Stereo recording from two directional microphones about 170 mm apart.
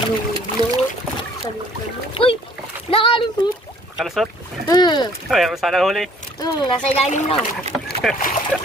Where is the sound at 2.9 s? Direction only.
30° left (ahead or behind).